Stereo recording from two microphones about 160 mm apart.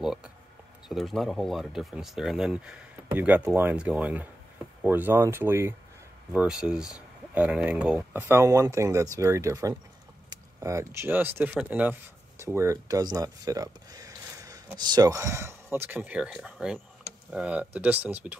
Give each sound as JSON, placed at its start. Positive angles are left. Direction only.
{"t": 0.0, "sound": "speech", "side_deg": -5}